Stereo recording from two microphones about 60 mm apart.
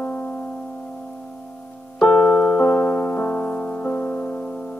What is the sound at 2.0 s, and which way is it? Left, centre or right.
Music, left.